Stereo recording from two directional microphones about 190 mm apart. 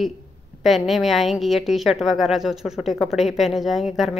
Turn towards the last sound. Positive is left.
turn(degrees=0)  # may be behind; listen again after turning